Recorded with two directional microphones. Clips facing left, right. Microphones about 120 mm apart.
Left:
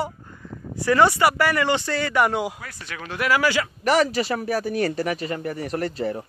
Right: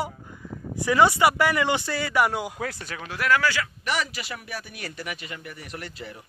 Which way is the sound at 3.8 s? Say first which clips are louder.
Left 12 dB; 35° left (ahead or behind).